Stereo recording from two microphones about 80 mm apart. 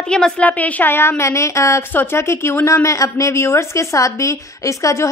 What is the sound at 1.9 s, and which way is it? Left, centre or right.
Speech, left.